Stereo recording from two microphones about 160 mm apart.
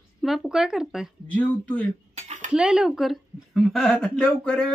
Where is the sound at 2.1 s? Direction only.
45° right (ahead or behind).